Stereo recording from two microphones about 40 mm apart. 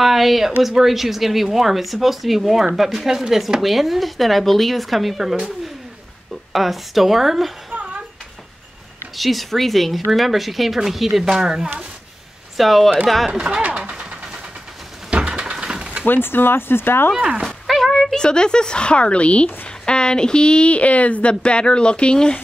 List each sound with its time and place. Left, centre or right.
0.0 s speech: centre
6.5 s speech: centre
7.7 s a sound: right
9.1 s speech: centre
12.5 s speech: centre
13.3 s speech: right
13.7 s vehicle: right
15.0 s a sound: right
15.5 s mechanisms: right
16.1 s speech: left
17.6 s a sound: centre
17.9 s a woman's voice: centre